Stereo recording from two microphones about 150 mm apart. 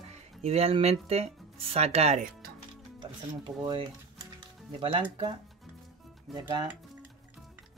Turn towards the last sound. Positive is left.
turn(degrees=0)  # may be behind; listen again after turning